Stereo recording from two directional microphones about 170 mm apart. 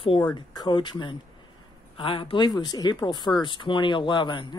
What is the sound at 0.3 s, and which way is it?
Speech, 25° left (ahead or behind).